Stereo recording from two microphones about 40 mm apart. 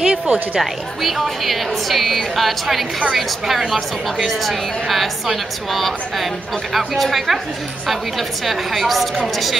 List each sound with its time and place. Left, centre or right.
0.0 s speech: right
0.6 s a woman's voice: centre